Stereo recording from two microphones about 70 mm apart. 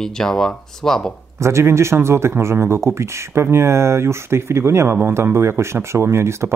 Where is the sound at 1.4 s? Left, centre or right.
Right.